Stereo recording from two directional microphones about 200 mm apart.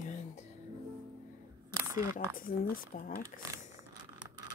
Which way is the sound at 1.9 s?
15° right (ahead or behind).